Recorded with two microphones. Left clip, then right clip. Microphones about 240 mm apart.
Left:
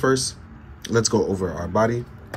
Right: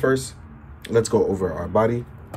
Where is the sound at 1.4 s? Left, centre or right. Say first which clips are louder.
Right 1 dB; centre.